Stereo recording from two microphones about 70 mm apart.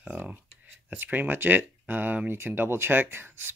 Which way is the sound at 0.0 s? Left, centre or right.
Right.